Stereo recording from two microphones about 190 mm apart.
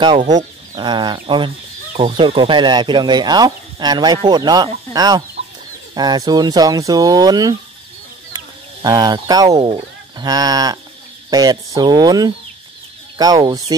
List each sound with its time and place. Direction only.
0.7 s speech: 25° right (ahead or behind)
8.8 s speech: 20° right (ahead or behind)